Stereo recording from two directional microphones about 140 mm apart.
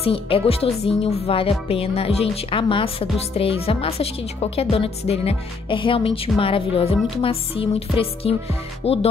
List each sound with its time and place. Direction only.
0.0 s speech: 40° left (ahead or behind)